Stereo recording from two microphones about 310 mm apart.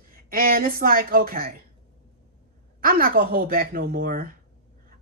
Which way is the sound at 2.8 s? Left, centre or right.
Right.